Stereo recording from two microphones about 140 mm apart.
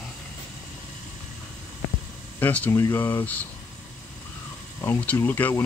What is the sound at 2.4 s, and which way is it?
Speech, 10° left (ahead or behind).